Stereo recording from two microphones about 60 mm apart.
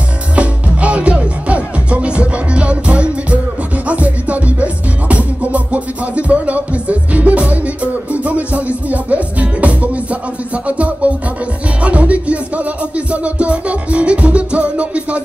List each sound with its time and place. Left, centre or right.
0.4 s music: right